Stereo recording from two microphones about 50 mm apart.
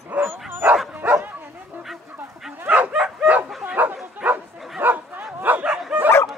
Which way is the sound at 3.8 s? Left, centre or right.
Right.